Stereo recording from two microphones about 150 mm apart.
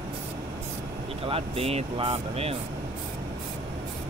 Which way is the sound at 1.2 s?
40° right (ahead or behind).